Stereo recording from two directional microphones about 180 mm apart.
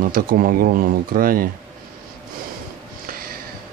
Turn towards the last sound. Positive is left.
turn(degrees=-55)  # may be behind; listen again after turning